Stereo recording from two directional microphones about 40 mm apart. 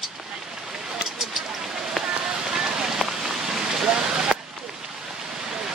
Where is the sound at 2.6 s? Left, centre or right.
Centre.